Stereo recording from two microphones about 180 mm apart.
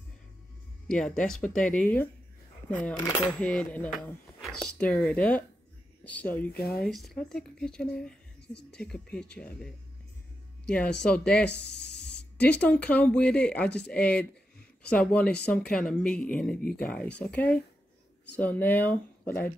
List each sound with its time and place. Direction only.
0.8 s speech: 5° left (ahead or behind)
3.3 s speech: 5° left (ahead or behind)
6.5 s speech: 60° left (ahead or behind)
6.8 s speech: centre (ahead or behind)
10.7 s speech: 5° left (ahead or behind)